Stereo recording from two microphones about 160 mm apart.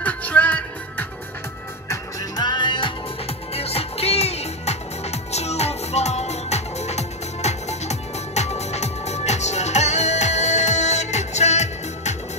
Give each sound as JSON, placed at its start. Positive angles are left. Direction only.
{"t": 0.0, "sound": "music", "side_deg": 10}
{"t": 1.9, "sound": "music", "side_deg": 25}